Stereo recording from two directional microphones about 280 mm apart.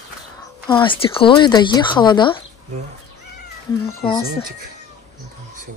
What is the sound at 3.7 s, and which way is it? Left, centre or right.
Speech, centre.